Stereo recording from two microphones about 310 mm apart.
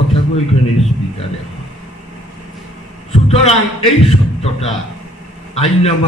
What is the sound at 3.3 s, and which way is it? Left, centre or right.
A man's voice, centre.